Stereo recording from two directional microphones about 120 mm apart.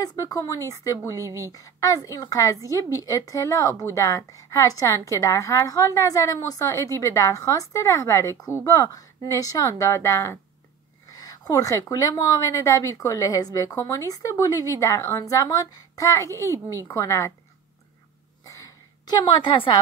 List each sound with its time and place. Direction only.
0.0 s speech: 30° left (ahead or behind)
1.2 s speech: 25° right (ahead or behind)
1.5 s a woman's voice: 30° left (ahead or behind)
11.1 s a woman's voice: 30° left (ahead or behind)
16.4 s speech: 25° right (ahead or behind)
16.8 s a woman's voice: 25° left (ahead or behind)
18.5 s a sound: 30° left (ahead or behind); by 19.8 s 45° left (ahead or behind)